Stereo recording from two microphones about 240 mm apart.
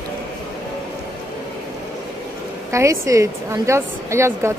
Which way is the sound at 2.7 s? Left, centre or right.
Centre.